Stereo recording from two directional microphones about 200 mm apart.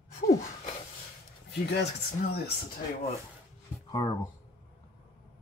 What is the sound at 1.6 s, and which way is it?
Speech, 55° left (ahead or behind).